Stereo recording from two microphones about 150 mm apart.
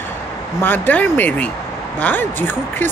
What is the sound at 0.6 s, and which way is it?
Speech, 15° left (ahead or behind).